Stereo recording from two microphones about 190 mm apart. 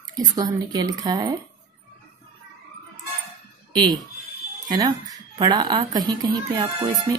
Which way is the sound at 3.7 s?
20° right (ahead or behind).